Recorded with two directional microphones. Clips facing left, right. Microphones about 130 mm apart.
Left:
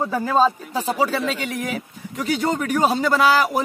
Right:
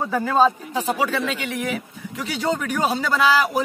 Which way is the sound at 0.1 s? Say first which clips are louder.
Right 2 dB; 35° left (ahead or behind).